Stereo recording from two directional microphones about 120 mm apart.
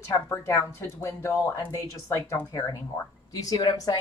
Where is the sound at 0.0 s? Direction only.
25° left (ahead or behind).